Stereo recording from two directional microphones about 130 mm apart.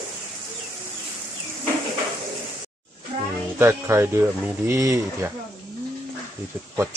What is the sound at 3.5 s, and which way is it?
Speech, 20° right (ahead or behind).